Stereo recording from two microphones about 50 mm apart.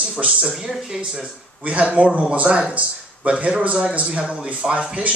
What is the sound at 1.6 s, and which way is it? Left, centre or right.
Speech, right.